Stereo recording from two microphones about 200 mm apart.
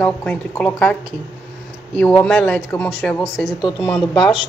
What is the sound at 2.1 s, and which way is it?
A woman's voice, 5° left (ahead or behind).